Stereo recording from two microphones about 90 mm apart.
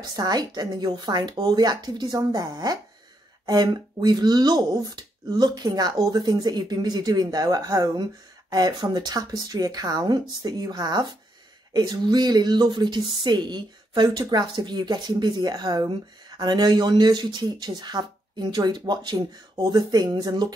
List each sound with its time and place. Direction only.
0.1 s speech: 45° right (ahead or behind)